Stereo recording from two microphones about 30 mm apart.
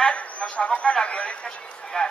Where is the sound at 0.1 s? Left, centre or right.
Left.